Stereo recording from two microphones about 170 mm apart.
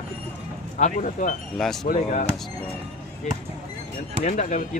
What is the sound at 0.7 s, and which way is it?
Speech, 45° left (ahead or behind).